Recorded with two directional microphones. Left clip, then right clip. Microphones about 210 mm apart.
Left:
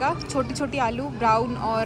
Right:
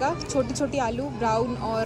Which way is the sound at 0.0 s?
5° right (ahead or behind).